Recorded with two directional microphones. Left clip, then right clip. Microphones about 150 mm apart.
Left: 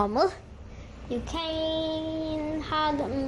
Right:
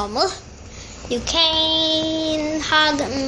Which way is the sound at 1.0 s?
5° left (ahead or behind).